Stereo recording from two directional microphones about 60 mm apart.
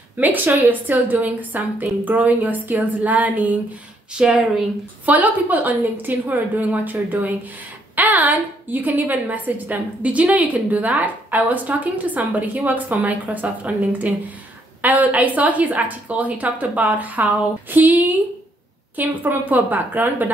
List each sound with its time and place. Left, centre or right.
0.2 s a woman's voice: right
4.2 s speech: centre
5.0 s a woman's voice: right